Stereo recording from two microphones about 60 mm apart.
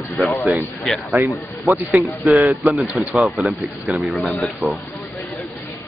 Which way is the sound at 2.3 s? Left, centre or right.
Right.